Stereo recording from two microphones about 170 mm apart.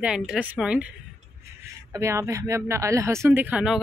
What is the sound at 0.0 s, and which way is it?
Speech, 5° right (ahead or behind).